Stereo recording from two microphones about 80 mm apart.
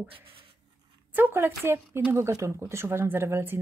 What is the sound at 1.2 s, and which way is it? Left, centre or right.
Speech, right.